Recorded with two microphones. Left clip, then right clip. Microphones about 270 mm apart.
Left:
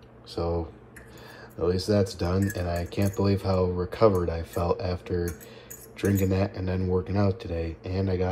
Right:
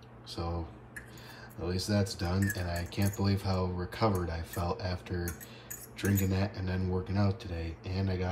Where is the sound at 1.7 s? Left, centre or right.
Centre.